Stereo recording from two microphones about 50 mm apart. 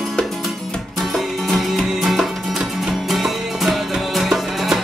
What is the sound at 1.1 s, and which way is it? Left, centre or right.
Music, centre.